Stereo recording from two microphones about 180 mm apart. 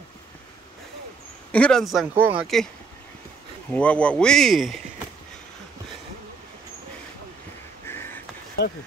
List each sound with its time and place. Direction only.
1.5 s speech: 5° left (ahead or behind)
2.4 s speech: centre (ahead or behind)
3.7 s speech: 5° left (ahead or behind)
7.8 s a sound: 15° left (ahead or behind)
8.6 s speech: 65° left (ahead or behind)